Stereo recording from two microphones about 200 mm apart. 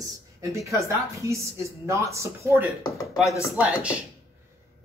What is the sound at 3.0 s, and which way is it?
Speech, centre (ahead or behind).